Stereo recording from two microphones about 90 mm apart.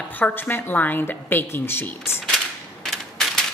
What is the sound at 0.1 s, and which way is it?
A woman's voice, 20° left (ahead or behind).